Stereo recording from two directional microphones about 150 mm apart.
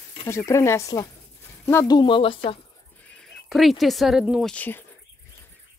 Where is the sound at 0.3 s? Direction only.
20° left (ahead or behind).